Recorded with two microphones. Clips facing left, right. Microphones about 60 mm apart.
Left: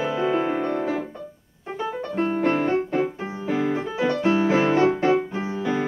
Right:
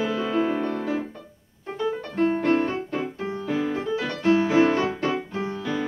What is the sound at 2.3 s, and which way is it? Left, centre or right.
Music, centre.